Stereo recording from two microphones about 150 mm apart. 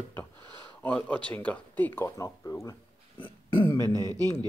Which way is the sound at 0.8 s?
10° left (ahead or behind).